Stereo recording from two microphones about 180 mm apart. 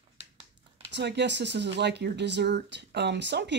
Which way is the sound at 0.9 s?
70° right (ahead or behind).